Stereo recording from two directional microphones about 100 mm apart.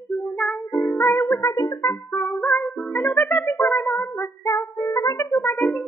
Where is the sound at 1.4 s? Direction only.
35° left (ahead or behind).